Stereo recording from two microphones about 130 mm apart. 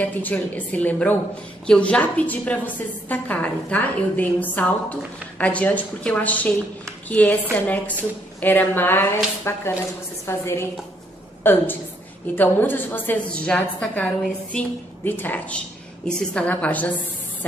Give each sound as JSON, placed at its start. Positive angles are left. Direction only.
{"t": 0.0, "sound": "a woman's voice", "side_deg": 10}